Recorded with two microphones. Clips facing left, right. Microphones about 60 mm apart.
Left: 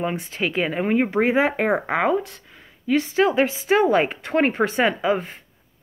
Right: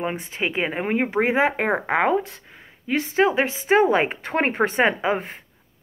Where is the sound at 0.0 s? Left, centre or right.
Right.